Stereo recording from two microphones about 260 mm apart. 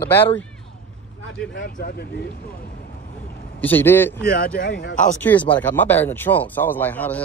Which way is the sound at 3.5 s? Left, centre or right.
Centre.